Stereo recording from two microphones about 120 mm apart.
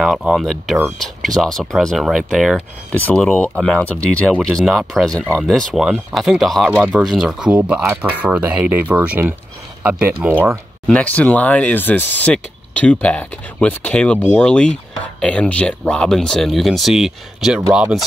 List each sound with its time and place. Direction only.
0.0 s speech: 5° right (ahead or behind)
3.0 s speech: 10° left (ahead or behind); by 10.6 s 15° right (ahead or behind)
10.9 s speech: 10° left (ahead or behind)